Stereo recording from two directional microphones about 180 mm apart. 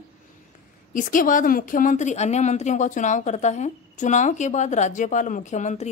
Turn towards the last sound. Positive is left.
turn(degrees=40)  # may be behind; listen again after turning